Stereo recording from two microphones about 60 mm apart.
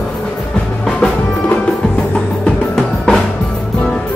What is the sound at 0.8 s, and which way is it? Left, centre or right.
Music, centre.